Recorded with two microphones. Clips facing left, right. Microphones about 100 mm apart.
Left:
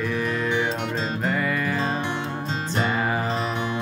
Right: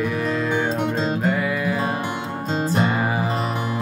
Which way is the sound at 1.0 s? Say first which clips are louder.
Right 4 dB; 5° right (ahead or behind).